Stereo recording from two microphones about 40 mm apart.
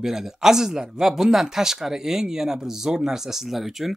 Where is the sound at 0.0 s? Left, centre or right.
Centre.